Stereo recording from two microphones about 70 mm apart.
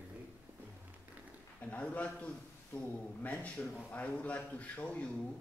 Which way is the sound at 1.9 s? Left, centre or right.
Centre.